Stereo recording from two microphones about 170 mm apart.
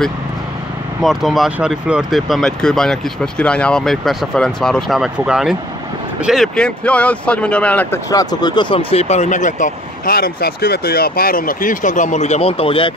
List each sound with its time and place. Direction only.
1.0 s speech: centre (ahead or behind)
8.1 s speech: 20° left (ahead or behind)